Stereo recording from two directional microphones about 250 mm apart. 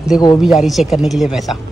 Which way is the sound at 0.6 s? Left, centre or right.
Centre.